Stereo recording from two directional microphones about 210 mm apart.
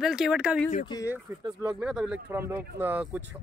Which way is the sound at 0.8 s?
20° left (ahead or behind).